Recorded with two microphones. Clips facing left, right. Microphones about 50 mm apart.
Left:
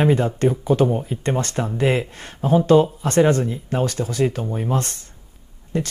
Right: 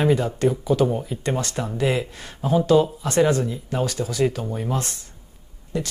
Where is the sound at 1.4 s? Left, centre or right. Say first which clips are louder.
Left 3 dB; left.